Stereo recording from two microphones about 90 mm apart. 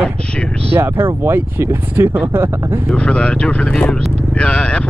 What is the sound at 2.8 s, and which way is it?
Speech, 10° left (ahead or behind).